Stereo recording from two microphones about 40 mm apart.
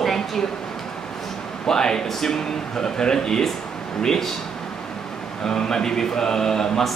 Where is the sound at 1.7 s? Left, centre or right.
Centre.